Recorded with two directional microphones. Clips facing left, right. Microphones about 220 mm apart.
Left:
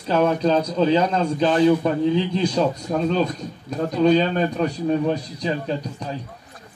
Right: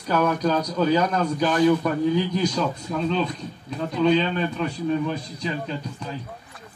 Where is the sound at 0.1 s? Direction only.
25° left (ahead or behind).